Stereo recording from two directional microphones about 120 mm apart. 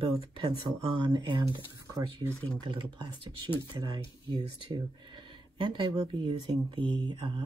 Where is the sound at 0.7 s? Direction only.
35° right (ahead or behind).